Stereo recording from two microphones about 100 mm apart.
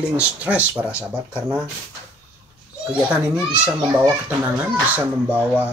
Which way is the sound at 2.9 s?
15° right (ahead or behind).